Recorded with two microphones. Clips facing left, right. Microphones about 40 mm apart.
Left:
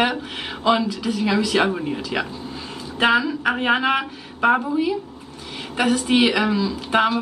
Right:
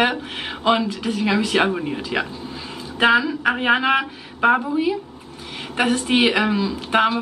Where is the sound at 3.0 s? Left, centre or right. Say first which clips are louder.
Right 2 dB; centre.